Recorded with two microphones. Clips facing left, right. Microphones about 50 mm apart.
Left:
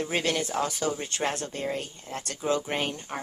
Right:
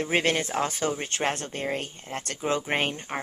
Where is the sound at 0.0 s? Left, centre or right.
Right.